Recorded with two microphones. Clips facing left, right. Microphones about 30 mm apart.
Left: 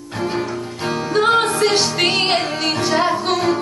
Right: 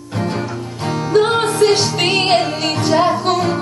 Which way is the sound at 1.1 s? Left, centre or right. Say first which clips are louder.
Right 1 dB; centre.